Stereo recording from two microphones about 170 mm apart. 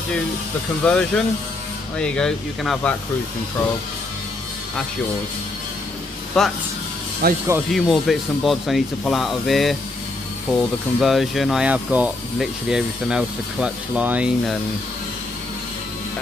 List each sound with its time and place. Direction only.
0.8 s speech: 5° left (ahead or behind)
6.4 s speech: 5° left (ahead or behind)
7.2 s speech: 65° right (ahead or behind)
7.7 s speech: centre (ahead or behind)